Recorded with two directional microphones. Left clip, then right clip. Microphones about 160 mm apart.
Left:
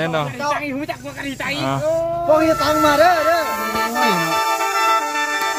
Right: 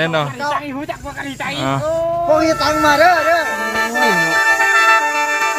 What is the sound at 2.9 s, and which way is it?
Speech, 10° left (ahead or behind).